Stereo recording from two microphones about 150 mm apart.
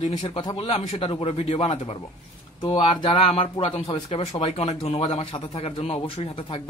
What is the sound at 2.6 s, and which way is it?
Speech, 35° left (ahead or behind).